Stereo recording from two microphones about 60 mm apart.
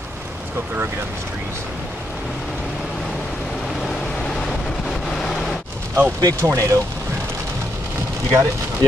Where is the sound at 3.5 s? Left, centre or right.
Centre.